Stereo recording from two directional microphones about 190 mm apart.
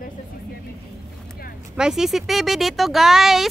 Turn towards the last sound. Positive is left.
turn(degrees=0)  # may be behind; listen again after turning